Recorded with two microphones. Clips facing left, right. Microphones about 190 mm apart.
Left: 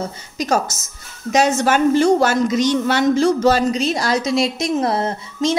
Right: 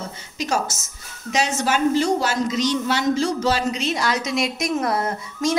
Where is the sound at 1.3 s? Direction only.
50° left (ahead or behind).